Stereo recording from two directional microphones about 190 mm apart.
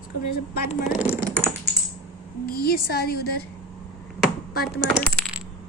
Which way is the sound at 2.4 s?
50° left (ahead or behind).